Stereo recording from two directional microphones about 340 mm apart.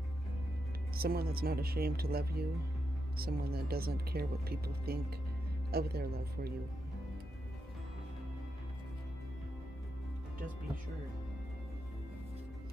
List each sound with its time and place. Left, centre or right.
0.9 s speech: right